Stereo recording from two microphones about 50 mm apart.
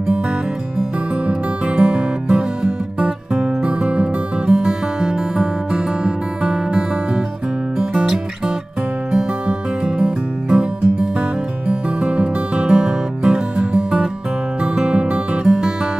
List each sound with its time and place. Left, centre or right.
1.8 s music: centre
4.5 s music: centre
10.5 s music: centre
12.6 s music: centre